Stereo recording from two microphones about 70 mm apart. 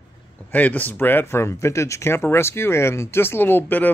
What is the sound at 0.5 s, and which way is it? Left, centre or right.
Speech, left.